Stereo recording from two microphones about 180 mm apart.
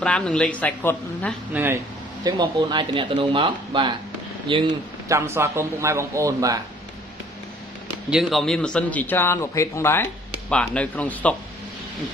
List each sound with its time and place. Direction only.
0.0 s a man's voice: 5° left (ahead or behind)
1.5 s a man's voice: 10° right (ahead or behind)
2.2 s speech: 25° right (ahead or behind)
5.1 s a man's voice: 15° right (ahead or behind)
8.1 s a man's voice: centre (ahead or behind)